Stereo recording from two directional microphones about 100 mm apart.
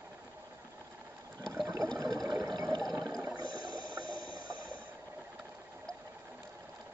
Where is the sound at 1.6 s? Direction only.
35° right (ahead or behind).